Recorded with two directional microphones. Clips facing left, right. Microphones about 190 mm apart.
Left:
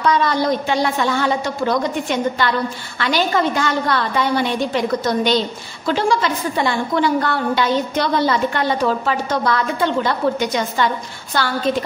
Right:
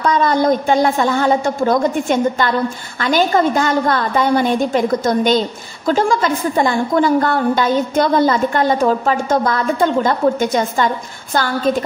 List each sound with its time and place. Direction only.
0.0 s a woman's voice: 45° right (ahead or behind)